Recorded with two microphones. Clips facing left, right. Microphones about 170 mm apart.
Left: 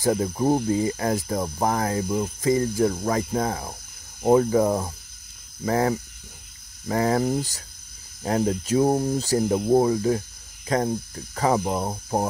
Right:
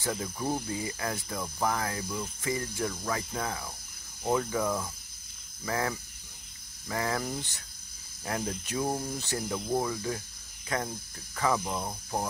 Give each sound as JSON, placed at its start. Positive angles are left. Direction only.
{"t": 0.0, "sound": "speech", "side_deg": 40}